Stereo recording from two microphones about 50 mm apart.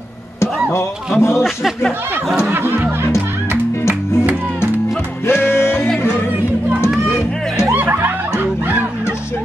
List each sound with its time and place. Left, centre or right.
0.7 s speech: left
2.5 s music: right
5.2 s music: left
7.1 s music: left
7.7 s music: right